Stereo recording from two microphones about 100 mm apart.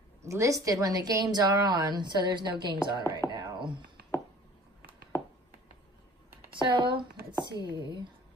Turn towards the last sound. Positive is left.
turn(degrees=-50)  # may be behind; listen again after turning